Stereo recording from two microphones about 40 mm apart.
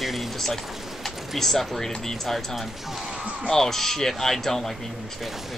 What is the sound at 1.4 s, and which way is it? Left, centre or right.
Speech, centre.